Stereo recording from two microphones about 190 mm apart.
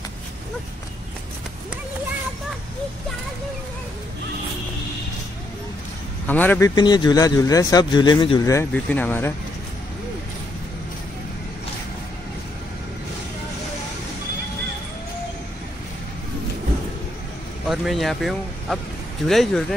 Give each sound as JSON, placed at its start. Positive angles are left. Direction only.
{"t": 6.2, "sound": "speech", "side_deg": 10}
{"t": 6.7, "sound": "speech", "side_deg": 20}
{"t": 8.7, "sound": "speech", "side_deg": 10}
{"t": 17.6, "sound": "speech", "side_deg": 0}